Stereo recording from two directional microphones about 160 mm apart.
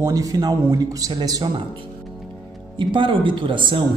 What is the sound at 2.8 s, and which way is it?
Speech, 30° right (ahead or behind).